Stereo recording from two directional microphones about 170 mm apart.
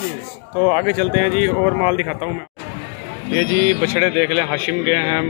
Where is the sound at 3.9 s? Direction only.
30° right (ahead or behind).